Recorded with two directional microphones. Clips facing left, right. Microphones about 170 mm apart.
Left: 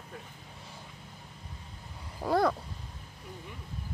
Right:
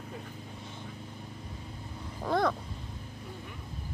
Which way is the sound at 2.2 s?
10° left (ahead or behind).